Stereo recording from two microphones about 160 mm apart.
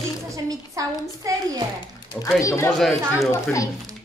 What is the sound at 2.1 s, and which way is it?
Speech, 20° left (ahead or behind).